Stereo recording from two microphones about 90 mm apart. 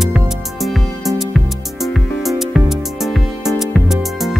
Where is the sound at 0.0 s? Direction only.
Centre (ahead or behind).